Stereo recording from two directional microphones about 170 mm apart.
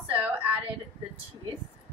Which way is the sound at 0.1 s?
10° right (ahead or behind).